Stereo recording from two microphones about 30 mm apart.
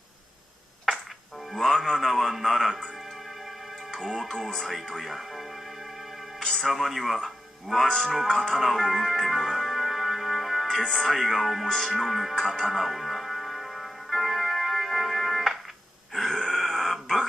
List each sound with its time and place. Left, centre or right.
1.5 s music: centre
1.9 s a sound: centre
4.2 s music: centre
5.0 s speech: centre
6.6 s speech: centre
8.3 s speech: centre
8.5 s music: centre
10.8 s speech: centre
11.6 s music: centre
16.1 s grunt: centre